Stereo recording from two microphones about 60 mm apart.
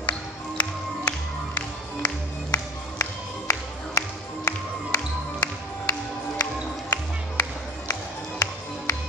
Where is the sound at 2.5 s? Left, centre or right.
Left.